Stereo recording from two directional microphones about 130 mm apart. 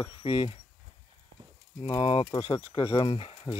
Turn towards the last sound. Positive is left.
turn(degrees=45)  # may be behind; listen again after turning